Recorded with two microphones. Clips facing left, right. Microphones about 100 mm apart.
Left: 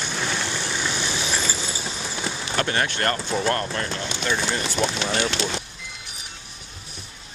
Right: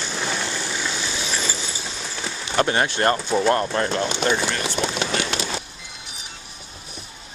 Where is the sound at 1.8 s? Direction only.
5° left (ahead or behind).